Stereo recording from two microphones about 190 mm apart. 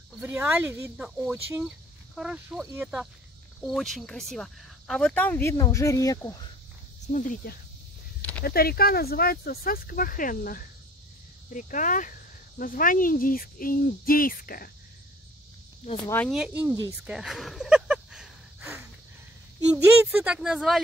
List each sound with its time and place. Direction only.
0.2 s speech: 10° right (ahead or behind); by 6.3 s 15° left (ahead or behind)
7.1 s speech: 45° left (ahead or behind)
16.3 s speech: 5° right (ahead or behind)
17.1 s a sound: centre (ahead or behind)
19.6 s speech: 5° right (ahead or behind)